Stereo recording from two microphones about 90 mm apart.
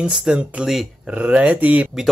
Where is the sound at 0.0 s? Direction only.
5° right (ahead or behind).